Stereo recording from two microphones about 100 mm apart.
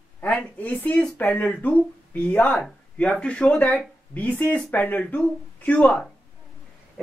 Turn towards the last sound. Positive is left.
turn(degrees=15)  # may be behind; listen again after turning